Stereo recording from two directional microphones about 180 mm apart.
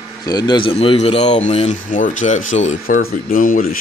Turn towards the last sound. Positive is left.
turn(degrees=50)  # may be behind; listen again after turning